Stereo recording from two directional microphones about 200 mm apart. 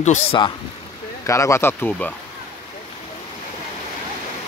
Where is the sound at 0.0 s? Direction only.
35° left (ahead or behind).